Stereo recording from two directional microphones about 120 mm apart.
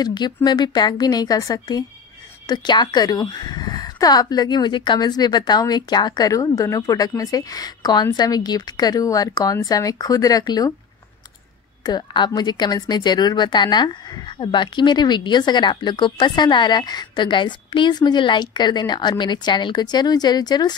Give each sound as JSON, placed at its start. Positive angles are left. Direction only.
{"t": 0.0, "sound": "speech", "side_deg": 35}
{"t": 11.8, "sound": "speech", "side_deg": 35}